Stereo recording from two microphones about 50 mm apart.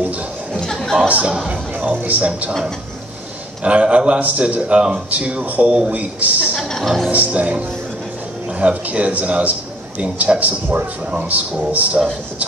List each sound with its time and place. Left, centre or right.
0.5 s a sound: centre
1.0 s speech: right
3.6 s speech: right
6.7 s speech: centre
7.1 s speech: right